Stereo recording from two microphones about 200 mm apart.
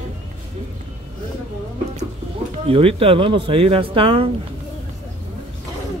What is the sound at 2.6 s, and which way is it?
Speech, 30° right (ahead or behind).